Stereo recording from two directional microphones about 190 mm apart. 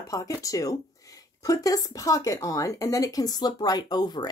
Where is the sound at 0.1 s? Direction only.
15° left (ahead or behind).